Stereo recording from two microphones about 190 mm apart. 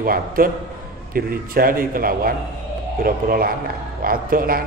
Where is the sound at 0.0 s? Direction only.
50° right (ahead or behind).